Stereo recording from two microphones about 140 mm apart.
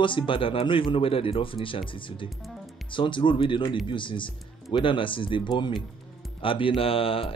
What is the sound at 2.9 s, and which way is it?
Speech, 35° left (ahead or behind).